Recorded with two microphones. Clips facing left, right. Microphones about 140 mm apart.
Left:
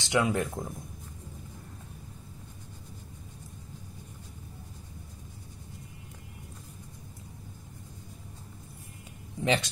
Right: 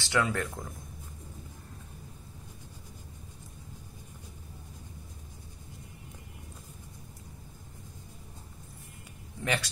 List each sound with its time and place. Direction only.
0.0 s speech: 15° left (ahead or behind)
9.4 s speech: 20° left (ahead or behind)